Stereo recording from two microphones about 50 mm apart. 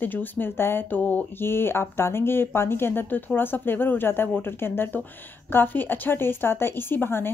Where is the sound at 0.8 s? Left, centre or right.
Left.